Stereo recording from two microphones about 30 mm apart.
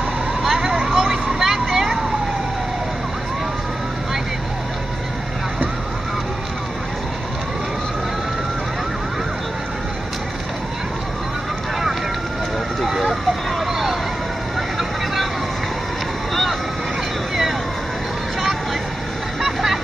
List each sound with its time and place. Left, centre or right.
0.4 s vehicle: centre
12.8 s vehicle: centre
19.4 s a sound: centre